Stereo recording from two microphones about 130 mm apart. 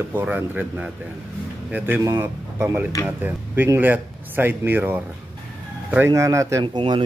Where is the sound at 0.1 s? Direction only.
10° right (ahead or behind).